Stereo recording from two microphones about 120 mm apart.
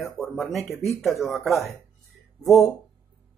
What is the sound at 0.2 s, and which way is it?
Speech, centre (ahead or behind).